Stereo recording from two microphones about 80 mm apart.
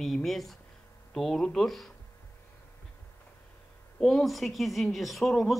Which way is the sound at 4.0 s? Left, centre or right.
Centre.